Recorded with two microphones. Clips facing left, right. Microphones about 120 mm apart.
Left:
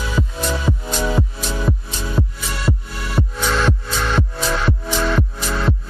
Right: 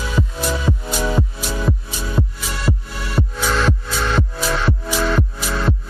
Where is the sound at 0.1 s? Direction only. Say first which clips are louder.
Right 1 dB; centre (ahead or behind).